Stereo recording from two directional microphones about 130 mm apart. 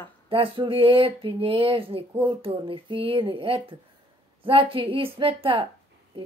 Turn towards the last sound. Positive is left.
turn(degrees=-45)  # may be behind; listen again after turning